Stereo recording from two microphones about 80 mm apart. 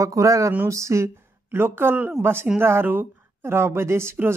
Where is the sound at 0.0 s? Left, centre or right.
Right.